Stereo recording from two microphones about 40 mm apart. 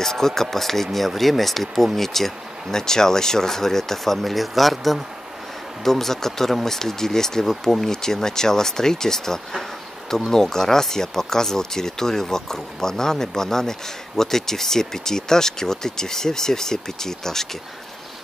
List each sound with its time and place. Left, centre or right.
0.0 s speech: centre